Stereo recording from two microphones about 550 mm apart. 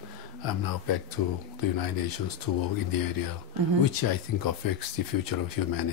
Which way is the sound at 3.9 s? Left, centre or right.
Left.